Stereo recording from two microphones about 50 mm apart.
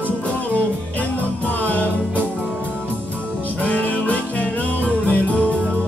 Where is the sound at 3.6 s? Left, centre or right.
Left.